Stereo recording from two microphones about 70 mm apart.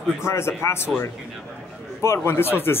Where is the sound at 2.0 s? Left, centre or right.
Left.